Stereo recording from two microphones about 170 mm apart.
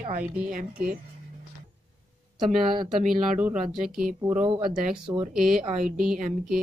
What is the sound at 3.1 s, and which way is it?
Speech, 5° right (ahead or behind).